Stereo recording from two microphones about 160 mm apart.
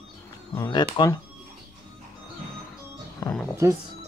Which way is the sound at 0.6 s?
30° left (ahead or behind).